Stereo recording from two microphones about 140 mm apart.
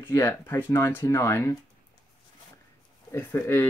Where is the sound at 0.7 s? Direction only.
20° left (ahead or behind).